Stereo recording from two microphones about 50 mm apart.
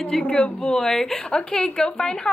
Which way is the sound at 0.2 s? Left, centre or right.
Left.